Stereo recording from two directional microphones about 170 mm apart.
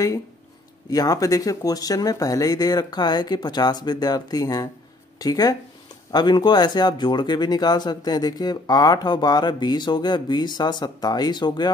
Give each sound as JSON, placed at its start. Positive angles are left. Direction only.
{"t": 0.8, "sound": "speech", "side_deg": 20}